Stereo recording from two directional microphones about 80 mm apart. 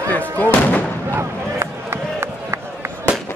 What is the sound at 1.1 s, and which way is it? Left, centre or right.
Crowd, right.